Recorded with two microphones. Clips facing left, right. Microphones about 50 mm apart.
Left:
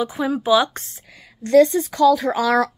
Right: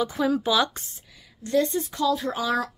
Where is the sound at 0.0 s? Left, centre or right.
Centre.